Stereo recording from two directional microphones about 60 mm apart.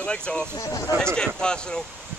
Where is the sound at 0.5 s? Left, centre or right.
Left.